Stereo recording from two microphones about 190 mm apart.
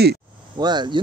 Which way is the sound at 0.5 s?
20° right (ahead or behind).